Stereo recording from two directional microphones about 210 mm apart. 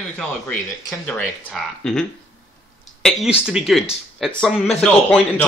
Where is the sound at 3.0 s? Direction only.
Centre (ahead or behind).